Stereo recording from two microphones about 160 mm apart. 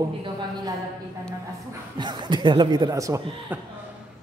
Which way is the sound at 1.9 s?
30° right (ahead or behind).